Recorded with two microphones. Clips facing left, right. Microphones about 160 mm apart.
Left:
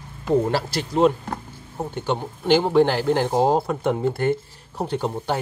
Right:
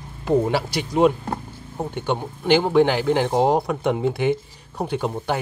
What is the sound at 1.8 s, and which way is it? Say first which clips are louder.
Speech: right 1 dB; 5° left (ahead or behind).